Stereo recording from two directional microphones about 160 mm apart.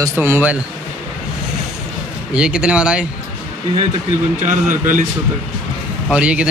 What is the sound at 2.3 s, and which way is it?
Speech, 5° right (ahead or behind).